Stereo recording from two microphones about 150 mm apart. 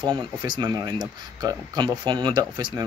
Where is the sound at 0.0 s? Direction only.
30° right (ahead or behind).